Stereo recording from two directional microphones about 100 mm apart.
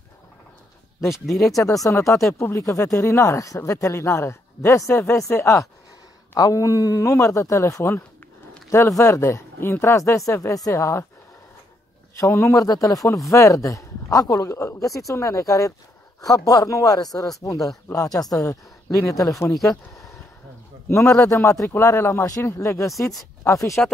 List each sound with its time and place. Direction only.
1.1 s speech: centre (ahead or behind)
1.9 s speech: 30° left (ahead or behind)
12.2 s speech: 25° left (ahead or behind)
12.6 s speech: 40° left (ahead or behind)